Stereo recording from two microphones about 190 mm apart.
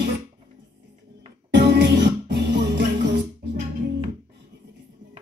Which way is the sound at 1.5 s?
60° right (ahead or behind).